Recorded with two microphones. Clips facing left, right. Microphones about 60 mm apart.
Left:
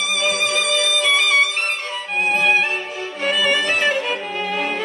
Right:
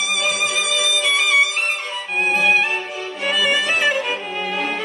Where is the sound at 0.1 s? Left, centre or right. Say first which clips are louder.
Left 2 dB; centre.